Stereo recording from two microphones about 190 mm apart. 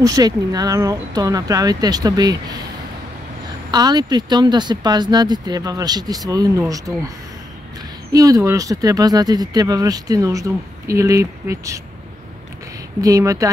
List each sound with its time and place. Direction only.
0.0 s speech: 20° right (ahead or behind)
3.7 s speech: 20° right (ahead or behind)
8.1 s speech: 20° right (ahead or behind)
13.0 s speech: 15° right (ahead or behind)